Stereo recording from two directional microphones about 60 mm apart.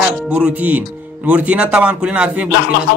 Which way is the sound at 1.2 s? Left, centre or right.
Right.